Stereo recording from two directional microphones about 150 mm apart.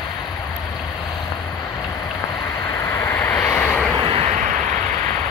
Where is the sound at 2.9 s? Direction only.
15° left (ahead or behind).